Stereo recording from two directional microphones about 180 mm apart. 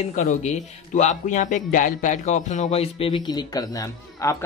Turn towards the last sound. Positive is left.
turn(degrees=20)  # may be behind; listen again after turning